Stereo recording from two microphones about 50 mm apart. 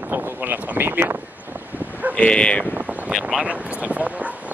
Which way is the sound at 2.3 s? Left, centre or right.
Centre.